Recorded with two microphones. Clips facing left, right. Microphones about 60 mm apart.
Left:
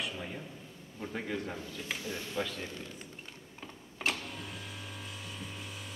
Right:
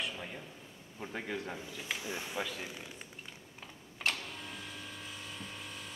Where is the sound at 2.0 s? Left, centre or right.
Centre.